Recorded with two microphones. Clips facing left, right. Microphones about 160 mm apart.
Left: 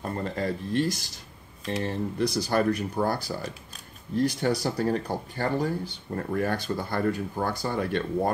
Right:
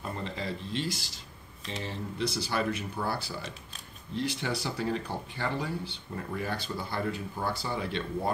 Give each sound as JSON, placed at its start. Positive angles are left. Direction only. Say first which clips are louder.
{"t": 0.0, "sound": "speech", "louder": "left 6 dB", "side_deg": 50}